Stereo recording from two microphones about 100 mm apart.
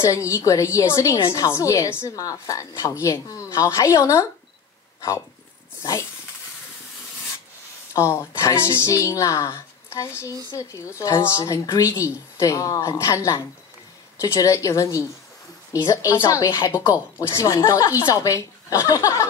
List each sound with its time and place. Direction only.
0.0 s a woman's voice: 30° left (ahead or behind)
5.8 s a woman's voice: 30° left (ahead or behind)
7.9 s a woman's voice: 30° left (ahead or behind)